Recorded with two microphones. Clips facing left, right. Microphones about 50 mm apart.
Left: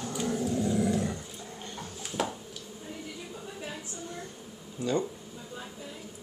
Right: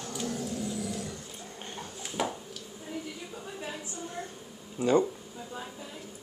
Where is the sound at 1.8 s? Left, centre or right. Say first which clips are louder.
Even; centre.